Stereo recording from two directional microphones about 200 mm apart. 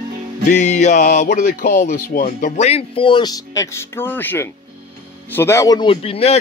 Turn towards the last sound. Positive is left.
turn(degrees=30)  # may be behind; listen again after turning